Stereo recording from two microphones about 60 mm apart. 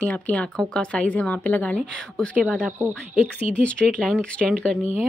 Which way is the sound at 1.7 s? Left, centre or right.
Centre.